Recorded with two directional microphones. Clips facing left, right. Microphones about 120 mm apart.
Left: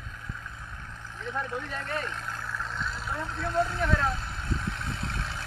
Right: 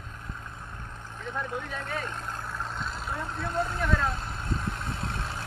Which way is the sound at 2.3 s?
20° right (ahead or behind).